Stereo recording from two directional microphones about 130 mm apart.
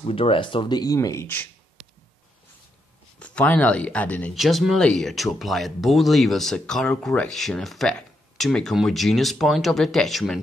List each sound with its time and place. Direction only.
0.0 s speech: 45° left (ahead or behind); by 1.5 s 15° left (ahead or behind)
3.2 s speech: 10° left (ahead or behind)
4.4 s speech: centre (ahead or behind)